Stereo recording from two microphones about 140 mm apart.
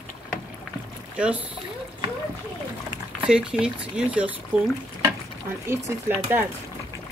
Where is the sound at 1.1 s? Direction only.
10° right (ahead or behind).